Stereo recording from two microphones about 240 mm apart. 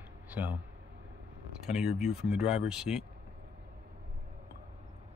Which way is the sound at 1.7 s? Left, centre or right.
Centre.